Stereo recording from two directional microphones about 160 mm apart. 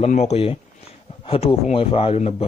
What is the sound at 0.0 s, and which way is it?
A man's voice, 45° left (ahead or behind).